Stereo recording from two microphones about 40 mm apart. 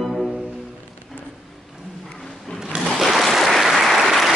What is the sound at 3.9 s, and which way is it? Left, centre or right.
Applause, centre.